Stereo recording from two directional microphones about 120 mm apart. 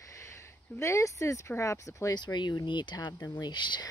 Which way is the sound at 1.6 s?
25° left (ahead or behind).